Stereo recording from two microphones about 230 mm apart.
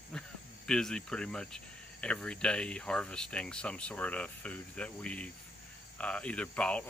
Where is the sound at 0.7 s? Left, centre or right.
Centre.